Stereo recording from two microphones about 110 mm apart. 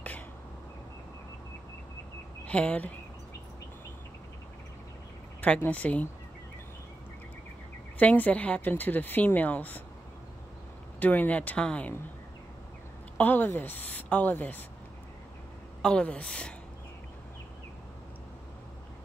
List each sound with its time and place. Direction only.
2.4 s speech: 10° left (ahead or behind)
5.4 s a woman's voice: 15° left (ahead or behind)
8.0 s a woman's voice: 15° left (ahead or behind)
11.0 s a woman's voice: 15° left (ahead or behind)
13.2 s a woman's voice: 15° left (ahead or behind)
15.8 s a woman's voice: 10° left (ahead or behind)